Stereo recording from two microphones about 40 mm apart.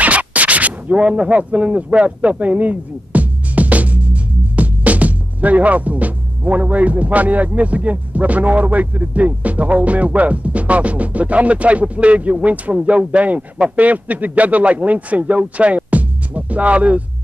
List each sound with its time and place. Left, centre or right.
0.0 s scratch: right
1.3 s speech: right